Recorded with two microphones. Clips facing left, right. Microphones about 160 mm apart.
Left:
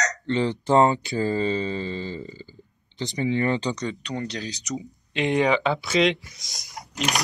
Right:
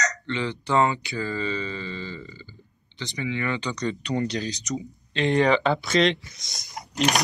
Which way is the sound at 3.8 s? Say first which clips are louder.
Right 3 dB; centre (ahead or behind).